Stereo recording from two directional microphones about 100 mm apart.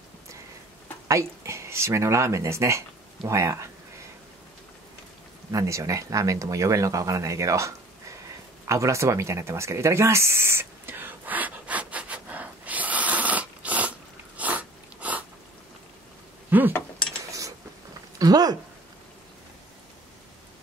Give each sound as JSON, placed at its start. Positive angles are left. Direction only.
{"t": 1.0, "sound": "speech", "side_deg": -30}
{"t": 5.5, "sound": "speech", "side_deg": -35}
{"t": 8.6, "sound": "a sound", "side_deg": -30}
{"t": 16.4, "sound": "speech", "side_deg": -20}
{"t": 17.2, "sound": "a sound", "side_deg": -30}
{"t": 18.2, "sound": "speech", "side_deg": -40}